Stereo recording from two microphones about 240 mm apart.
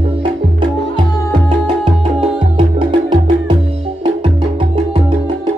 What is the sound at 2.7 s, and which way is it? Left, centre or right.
Music, right.